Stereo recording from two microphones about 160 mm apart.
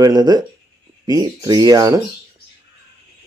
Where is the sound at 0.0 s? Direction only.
25° right (ahead or behind).